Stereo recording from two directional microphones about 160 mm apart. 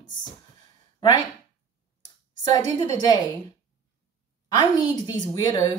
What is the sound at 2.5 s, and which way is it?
Speech, 25° left (ahead or behind).